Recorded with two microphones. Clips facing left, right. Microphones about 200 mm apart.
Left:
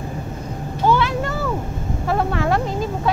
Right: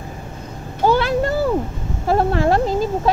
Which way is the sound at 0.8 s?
35° right (ahead or behind).